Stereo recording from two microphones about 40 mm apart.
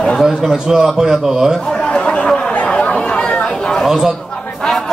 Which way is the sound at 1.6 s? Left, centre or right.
Centre.